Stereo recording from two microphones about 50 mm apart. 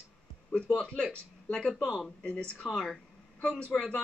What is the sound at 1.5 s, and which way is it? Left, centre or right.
Speech, centre.